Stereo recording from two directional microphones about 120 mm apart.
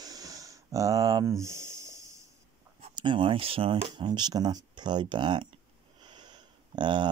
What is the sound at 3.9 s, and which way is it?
Speech, 40° right (ahead or behind).